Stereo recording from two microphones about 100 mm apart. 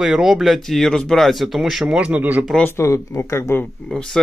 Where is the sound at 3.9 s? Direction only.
5° left (ahead or behind).